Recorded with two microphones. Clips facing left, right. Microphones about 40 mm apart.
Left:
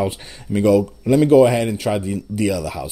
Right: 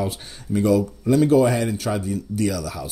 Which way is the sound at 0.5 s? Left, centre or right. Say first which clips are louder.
Left 4 dB; left.